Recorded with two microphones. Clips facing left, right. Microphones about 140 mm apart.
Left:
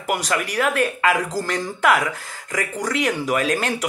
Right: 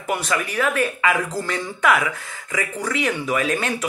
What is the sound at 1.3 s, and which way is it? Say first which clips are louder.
Speech: left 2 dB; 35° left (ahead or behind).